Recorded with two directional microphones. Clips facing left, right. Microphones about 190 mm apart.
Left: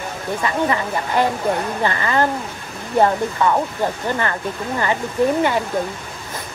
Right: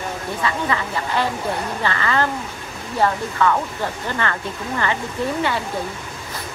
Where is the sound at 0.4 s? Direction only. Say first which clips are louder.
Left 3 dB; 15° left (ahead or behind).